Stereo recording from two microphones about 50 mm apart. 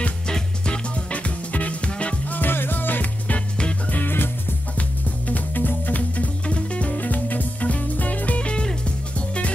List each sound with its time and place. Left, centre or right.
1.1 s music: left
2.3 s music: left
3.9 s music: left
5.3 s music: left
8.4 s music: left